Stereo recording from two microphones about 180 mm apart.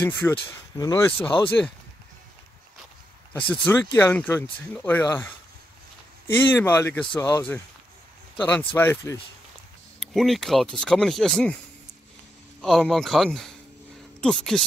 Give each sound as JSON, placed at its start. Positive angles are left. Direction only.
{"t": 0.0, "sound": "speech", "side_deg": 10}
{"t": 0.7, "sound": "speech", "side_deg": 20}
{"t": 3.3, "sound": "speech", "side_deg": 10}
{"t": 9.9, "sound": "speech", "side_deg": 0}
{"t": 12.6, "sound": "speech", "side_deg": 0}